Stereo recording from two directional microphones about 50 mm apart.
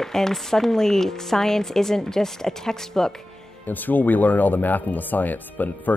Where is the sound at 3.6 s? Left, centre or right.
Left.